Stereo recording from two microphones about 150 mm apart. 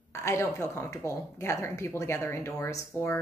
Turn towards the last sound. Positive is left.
turn(degrees=20)  # may be behind; listen again after turning